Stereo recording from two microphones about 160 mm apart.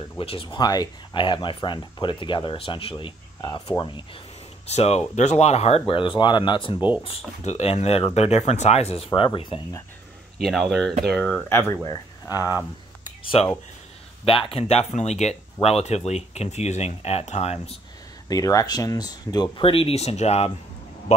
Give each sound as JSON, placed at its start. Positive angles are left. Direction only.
{"t": 0.2, "sound": "speech", "side_deg": 35}
{"t": 4.6, "sound": "speech", "side_deg": 40}
{"t": 7.4, "sound": "speech", "side_deg": 40}
{"t": 10.4, "sound": "speech", "side_deg": 0}
{"t": 13.4, "sound": "speech", "side_deg": 40}
{"t": 18.3, "sound": "speech", "side_deg": 20}